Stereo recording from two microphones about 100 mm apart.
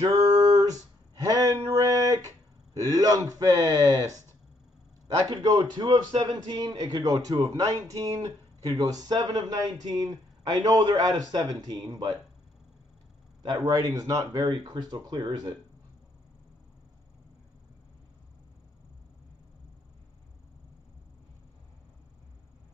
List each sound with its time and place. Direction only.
0.0 s a sound: 40° right (ahead or behind)
5.3 s a man's voice: 50° right (ahead or behind)
13.4 s speech: 45° right (ahead or behind)